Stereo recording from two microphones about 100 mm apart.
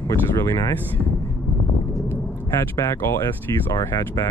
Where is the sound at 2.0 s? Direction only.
25° left (ahead or behind).